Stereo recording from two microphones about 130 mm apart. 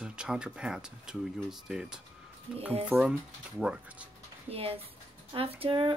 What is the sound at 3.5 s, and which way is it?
Speech, 10° right (ahead or behind).